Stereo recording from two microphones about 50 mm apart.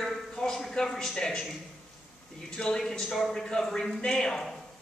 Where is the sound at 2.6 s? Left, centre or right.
Centre.